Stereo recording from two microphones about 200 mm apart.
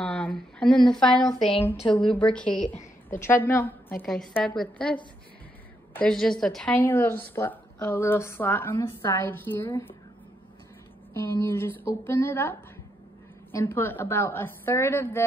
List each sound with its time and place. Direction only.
0.0 s a woman's voice: 5° left (ahead or behind)
2.6 s a sound: 40° left (ahead or behind)
3.2 s a woman's voice: 10° left (ahead or behind)
6.0 s a woman's voice: centre (ahead or behind)
11.1 s a woman's voice: 10° left (ahead or behind)
13.7 s a woman's voice: 10° left (ahead or behind)